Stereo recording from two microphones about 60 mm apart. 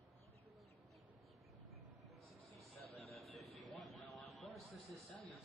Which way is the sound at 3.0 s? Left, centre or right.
Centre.